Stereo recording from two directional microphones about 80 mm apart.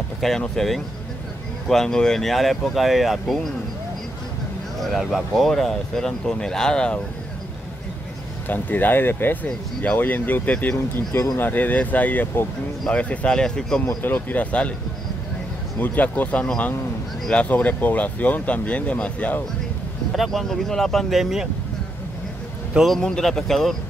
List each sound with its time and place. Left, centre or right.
0.2 s speech: centre
4.7 s speech: centre
8.5 s speech: left
14.0 s speech: centre
15.8 s speech: left
20.2 s speech: centre
22.8 s speech: centre